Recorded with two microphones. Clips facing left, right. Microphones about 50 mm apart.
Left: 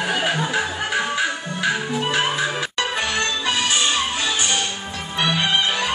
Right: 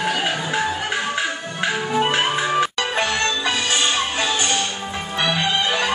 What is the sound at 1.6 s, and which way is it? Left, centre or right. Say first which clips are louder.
Music: right 2 dB; right.